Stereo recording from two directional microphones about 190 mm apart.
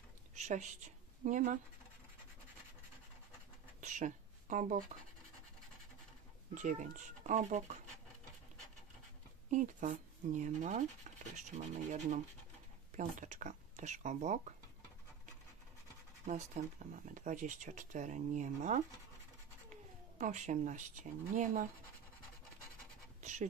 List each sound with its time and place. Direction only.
0.3 s a woman's voice: 35° right (ahead or behind)
3.8 s speech: 40° right (ahead or behind)
6.5 s speech: 40° right (ahead or behind)
9.5 s speech: 40° right (ahead or behind)
16.3 s speech: 40° right (ahead or behind)
20.2 s speech: 40° right (ahead or behind)